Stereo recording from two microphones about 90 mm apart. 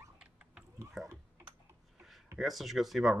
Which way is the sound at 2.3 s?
Centre (ahead or behind).